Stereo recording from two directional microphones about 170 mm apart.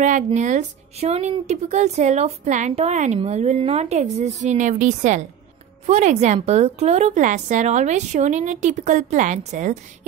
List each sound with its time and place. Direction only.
0.0 s a woman's voice: 45° right (ahead or behind)